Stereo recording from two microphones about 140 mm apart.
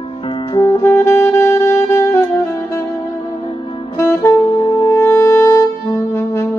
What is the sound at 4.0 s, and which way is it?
Saxophone, 25° left (ahead or behind).